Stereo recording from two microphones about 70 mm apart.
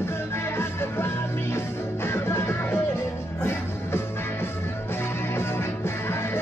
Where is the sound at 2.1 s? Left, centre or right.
Left.